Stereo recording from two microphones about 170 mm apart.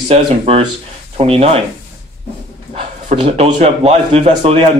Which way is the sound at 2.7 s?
35° right (ahead or behind).